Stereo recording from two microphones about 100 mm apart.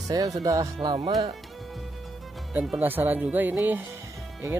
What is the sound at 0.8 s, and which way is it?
Speech, 50° right (ahead or behind).